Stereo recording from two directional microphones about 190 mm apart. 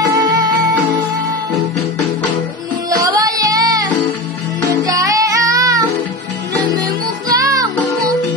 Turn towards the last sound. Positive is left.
turn(degrees=-20)  # may be behind; listen again after turning